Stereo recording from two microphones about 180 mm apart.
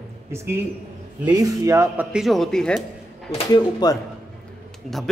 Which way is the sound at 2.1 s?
Centre (ahead or behind).